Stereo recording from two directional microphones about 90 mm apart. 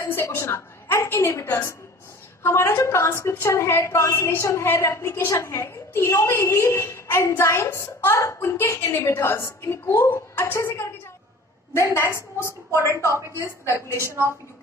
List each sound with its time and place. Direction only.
0.0 s a woman's voice: 35° left (ahead or behind)
12.8 s a woman's voice: 35° right (ahead or behind)
13.4 s a woman's voice: 30° left (ahead or behind)